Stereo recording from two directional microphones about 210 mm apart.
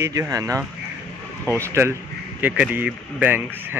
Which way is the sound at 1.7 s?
10° right (ahead or behind).